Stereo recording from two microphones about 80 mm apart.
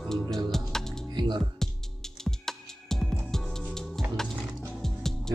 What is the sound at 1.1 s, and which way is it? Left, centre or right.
Music, right.